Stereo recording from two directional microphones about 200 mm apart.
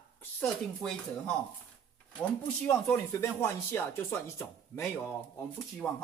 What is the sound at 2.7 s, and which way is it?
A man's voice, 10° left (ahead or behind).